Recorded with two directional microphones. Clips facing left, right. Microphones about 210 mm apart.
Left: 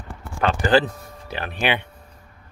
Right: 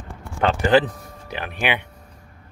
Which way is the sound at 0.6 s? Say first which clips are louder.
Right 1 dB; 20° right (ahead or behind).